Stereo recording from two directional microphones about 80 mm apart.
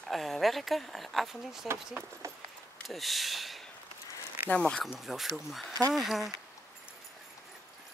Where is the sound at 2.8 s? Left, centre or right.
Centre.